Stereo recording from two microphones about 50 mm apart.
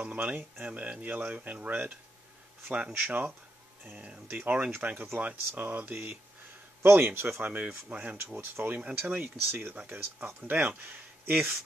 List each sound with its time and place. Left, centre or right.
0.0 s speech: right
6.8 s speech: right
7.2 s speech: right
8.4 s speech: right